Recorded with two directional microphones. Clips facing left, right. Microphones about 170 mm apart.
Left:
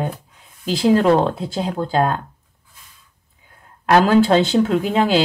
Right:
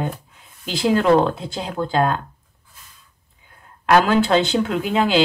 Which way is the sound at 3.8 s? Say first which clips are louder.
Left 2 dB; 30° left (ahead or behind).